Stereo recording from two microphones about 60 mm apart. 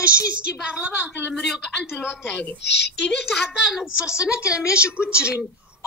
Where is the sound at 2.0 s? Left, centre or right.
Left.